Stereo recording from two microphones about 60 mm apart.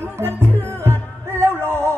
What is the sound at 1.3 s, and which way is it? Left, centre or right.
Music, right.